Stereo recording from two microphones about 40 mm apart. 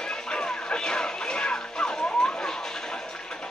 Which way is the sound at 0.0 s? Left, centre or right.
Centre.